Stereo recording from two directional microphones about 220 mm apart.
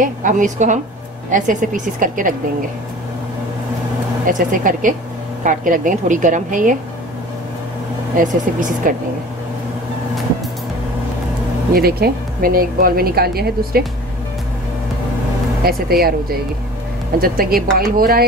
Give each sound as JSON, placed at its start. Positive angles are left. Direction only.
{"t": 0.0, "sound": "a woman's voice", "side_deg": -35}
{"t": 4.3, "sound": "a woman's voice", "side_deg": -35}
{"t": 8.2, "sound": "a woman's voice", "side_deg": -35}
{"t": 11.7, "sound": "speech", "side_deg": -45}
{"t": 15.6, "sound": "a woman's voice", "side_deg": -45}